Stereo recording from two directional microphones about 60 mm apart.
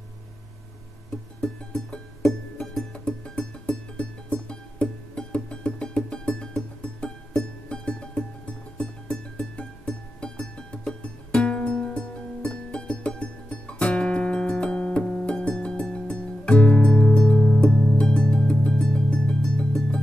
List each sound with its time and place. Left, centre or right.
1.4 s music: centre